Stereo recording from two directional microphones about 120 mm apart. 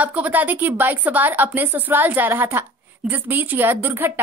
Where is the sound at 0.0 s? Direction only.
15° right (ahead or behind).